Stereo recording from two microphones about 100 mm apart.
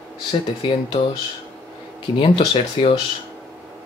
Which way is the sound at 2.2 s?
70° left (ahead or behind).